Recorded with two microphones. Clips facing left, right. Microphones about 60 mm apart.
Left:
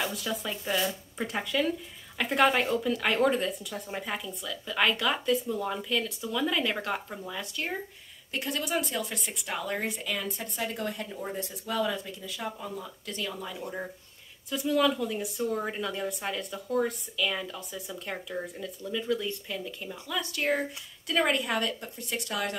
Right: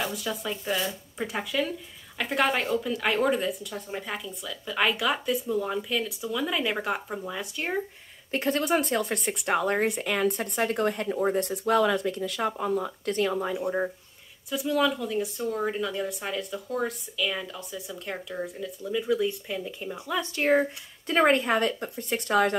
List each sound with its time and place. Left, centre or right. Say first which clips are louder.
0.0 s speech: right 1 dB; centre
8.3 s speech: right 6 dB; right
13.1 s speech: right 9 dB; right
14.5 s speech: right 1 dB; centre
20.1 s speech: right 5 dB; right